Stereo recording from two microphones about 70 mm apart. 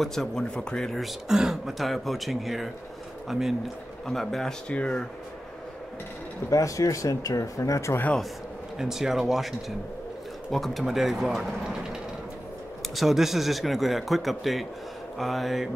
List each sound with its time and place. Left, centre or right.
0.0 s speech: centre
0.9 s speech: centre
6.5 s speech: left
8.7 s speech: centre
12.9 s speech: centre